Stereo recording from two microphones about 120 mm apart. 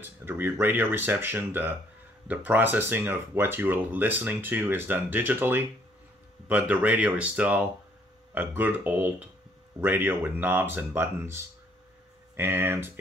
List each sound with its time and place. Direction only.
0.0 s speech: 20° right (ahead or behind)